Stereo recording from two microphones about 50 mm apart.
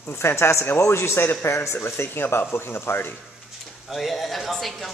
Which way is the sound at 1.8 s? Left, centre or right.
Left.